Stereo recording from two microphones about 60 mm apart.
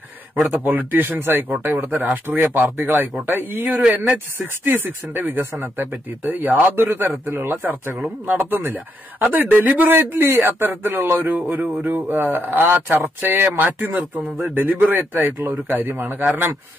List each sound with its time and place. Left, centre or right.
0.5 s speech: right